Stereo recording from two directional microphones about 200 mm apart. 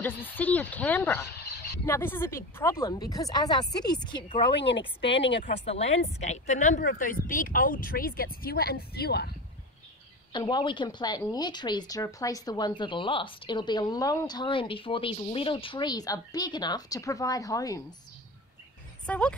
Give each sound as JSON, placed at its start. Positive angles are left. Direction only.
{"t": 0.0, "sound": "speech", "side_deg": 10}
{"t": 4.6, "sound": "speech", "side_deg": 60}
{"t": 5.5, "sound": "a woman's voice", "side_deg": 30}
{"t": 6.8, "sound": "speech", "side_deg": 45}
{"t": 10.3, "sound": "a woman's voice", "side_deg": 20}
{"t": 19.0, "sound": "speech", "side_deg": 5}